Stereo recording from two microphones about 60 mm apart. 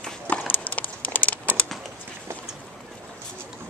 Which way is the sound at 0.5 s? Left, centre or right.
Left.